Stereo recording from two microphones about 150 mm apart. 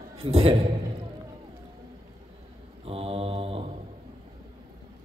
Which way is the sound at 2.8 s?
40° right (ahead or behind).